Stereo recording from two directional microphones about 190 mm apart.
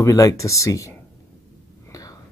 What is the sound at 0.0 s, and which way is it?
Speech, 15° left (ahead or behind).